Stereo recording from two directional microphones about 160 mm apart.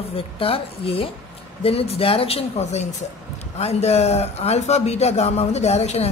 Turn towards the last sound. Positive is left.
turn(degrees=40)  # may be behind; listen again after turning